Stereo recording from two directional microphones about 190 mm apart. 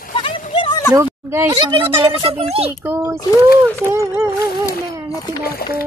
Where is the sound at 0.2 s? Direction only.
25° left (ahead or behind).